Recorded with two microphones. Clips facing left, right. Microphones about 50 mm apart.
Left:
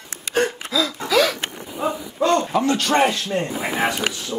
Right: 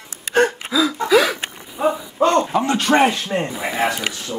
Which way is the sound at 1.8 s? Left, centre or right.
Right.